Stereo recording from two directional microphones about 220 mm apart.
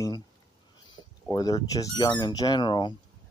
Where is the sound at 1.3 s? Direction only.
15° left (ahead or behind).